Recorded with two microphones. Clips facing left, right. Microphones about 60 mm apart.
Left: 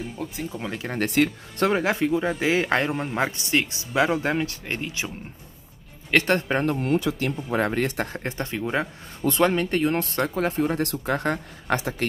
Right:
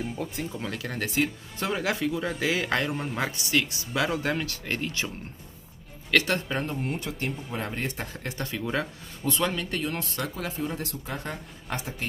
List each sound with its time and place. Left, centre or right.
0.0 s speech: centre
0.5 s speech: centre
0.9 s speech: left
1.7 s speech: left
2.9 s speech: centre
3.2 s speech: left
4.8 s speech: centre
6.1 s speech: left
6.6 s speech: left
8.1 s speech: left
9.2 s speech: left
10.9 s speech: left